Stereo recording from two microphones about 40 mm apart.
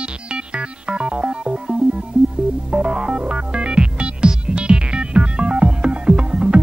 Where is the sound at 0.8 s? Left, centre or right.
Right.